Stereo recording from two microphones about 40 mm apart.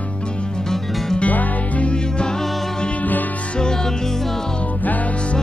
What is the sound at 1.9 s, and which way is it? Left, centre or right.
Music, left.